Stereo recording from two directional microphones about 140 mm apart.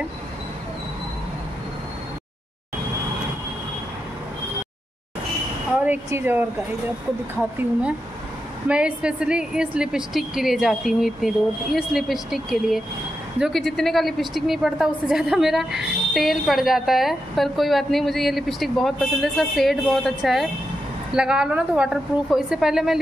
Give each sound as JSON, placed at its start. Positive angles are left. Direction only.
{"t": 6.0, "sound": "speech", "side_deg": -15}
{"t": 8.6, "sound": "a woman's voice", "side_deg": -10}